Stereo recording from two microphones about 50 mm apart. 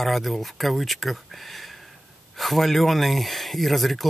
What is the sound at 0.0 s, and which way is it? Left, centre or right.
Speech, centre.